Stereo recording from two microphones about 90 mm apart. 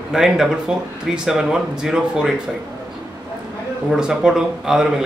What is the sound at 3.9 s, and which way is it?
Speech, 5° right (ahead or behind).